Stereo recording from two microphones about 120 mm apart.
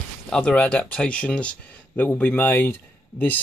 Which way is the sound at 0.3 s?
10° left (ahead or behind).